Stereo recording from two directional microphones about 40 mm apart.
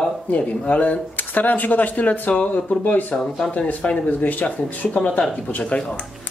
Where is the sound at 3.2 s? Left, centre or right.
Centre.